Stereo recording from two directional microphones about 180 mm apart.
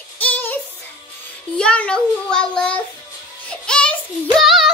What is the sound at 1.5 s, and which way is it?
Child singing, 5° left (ahead or behind).